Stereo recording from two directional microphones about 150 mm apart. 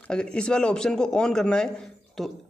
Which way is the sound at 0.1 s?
5° left (ahead or behind).